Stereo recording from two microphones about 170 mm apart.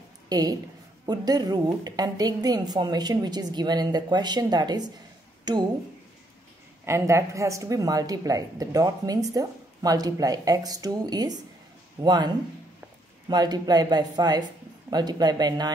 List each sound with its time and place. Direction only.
0.3 s a woman's voice: 20° right (ahead or behind)
6.9 s a woman's voice: 15° right (ahead or behind)
13.3 s a woman's voice: 25° right (ahead or behind)